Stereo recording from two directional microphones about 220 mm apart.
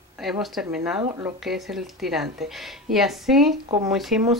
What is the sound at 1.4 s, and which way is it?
Speech, centre (ahead or behind).